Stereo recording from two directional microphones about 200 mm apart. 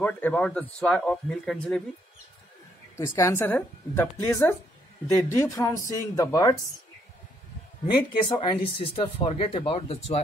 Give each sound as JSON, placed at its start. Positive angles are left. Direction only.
{"t": 0.0, "sound": "speech", "side_deg": 5}
{"t": 3.0, "sound": "speech", "side_deg": 15}
{"t": 7.9, "sound": "speech", "side_deg": 20}